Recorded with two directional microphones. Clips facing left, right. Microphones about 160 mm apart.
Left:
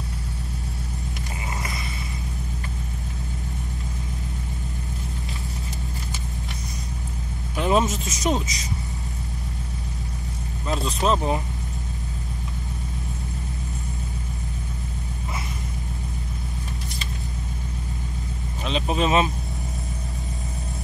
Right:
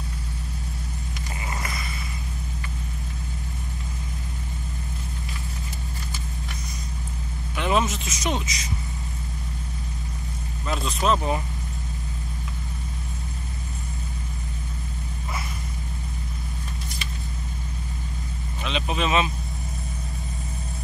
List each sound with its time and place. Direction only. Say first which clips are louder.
7.5 s vehicle: left 2 dB; 40° left (ahead or behind)
7.9 s speech: left 3 dB; 40° left (ahead or behind)
10.7 s speech: left 1 dB; 30° left (ahead or behind)
18.6 s speech: left 3 dB; 40° left (ahead or behind)